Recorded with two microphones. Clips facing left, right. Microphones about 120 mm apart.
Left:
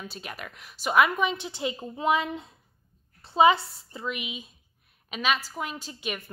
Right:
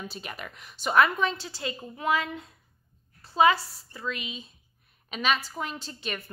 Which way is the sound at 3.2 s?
25° left (ahead or behind).